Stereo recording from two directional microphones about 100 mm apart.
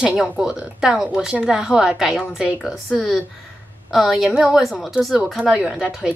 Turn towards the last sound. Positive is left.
turn(degrees=-5)  # may be behind; listen again after turning